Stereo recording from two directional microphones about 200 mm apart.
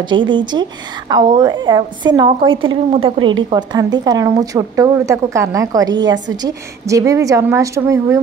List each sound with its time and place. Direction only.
0.0 s a woman's voice: 25° right (ahead or behind)